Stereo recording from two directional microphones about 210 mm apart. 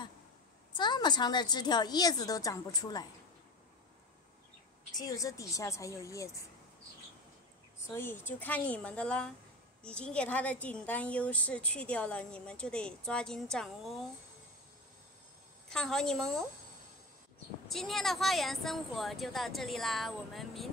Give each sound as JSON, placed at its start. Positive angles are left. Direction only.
{"t": 0.7, "sound": "a woman's voice", "side_deg": 20}
{"t": 4.9, "sound": "a woman's voice", "side_deg": 15}
{"t": 7.9, "sound": "a woman's voice", "side_deg": 10}
{"t": 15.7, "sound": "a woman's voice", "side_deg": 5}
{"t": 17.6, "sound": "a woman's voice", "side_deg": 0}